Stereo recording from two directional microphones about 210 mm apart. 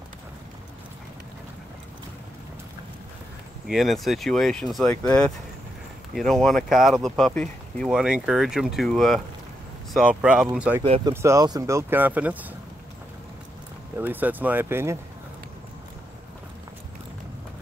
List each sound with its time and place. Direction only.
3.6 s speech: centre (ahead or behind)
10.8 s speech: 25° right (ahead or behind); by 12.4 s 5° right (ahead or behind)
13.9 s speech: 10° right (ahead or behind)